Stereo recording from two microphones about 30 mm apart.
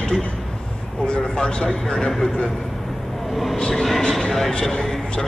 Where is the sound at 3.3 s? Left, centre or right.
Centre.